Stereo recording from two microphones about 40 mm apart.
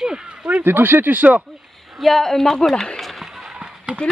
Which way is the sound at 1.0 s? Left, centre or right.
Right.